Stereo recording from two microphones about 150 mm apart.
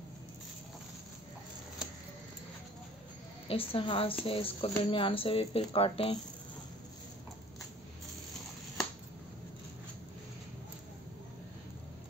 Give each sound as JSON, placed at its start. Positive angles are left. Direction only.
{"t": 3.4, "sound": "speech", "side_deg": 35}